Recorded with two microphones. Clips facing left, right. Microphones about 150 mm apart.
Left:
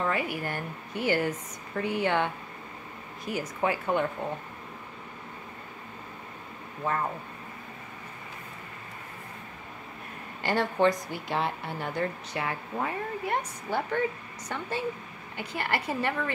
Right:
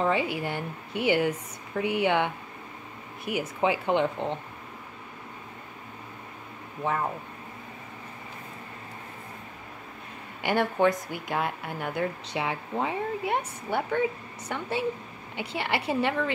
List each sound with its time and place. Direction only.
0.0 s a woman's voice: 25° right (ahead or behind)
6.8 s a woman's voice: 10° right (ahead or behind)
10.4 s a woman's voice: 10° right (ahead or behind)
12.4 s a woman's voice: 15° right (ahead or behind)